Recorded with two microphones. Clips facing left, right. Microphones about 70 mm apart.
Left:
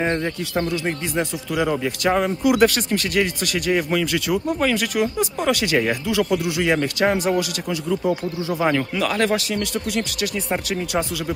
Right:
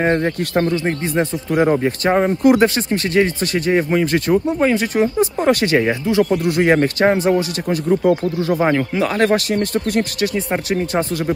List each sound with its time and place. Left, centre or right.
0.0 s speech: right
5.8 s speech: right
6.5 s speech: right
7.1 s speech: right
7.7 s speech: right
8.5 s speech: right
10.3 s speech: right